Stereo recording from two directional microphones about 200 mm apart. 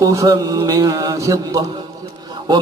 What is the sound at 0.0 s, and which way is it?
A man's voice, 15° right (ahead or behind).